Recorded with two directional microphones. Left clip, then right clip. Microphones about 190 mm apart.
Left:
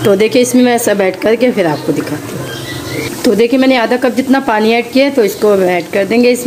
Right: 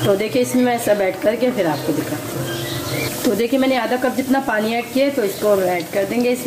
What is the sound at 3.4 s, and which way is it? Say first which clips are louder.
Speech: left 8 dB; 35° left (ahead or behind).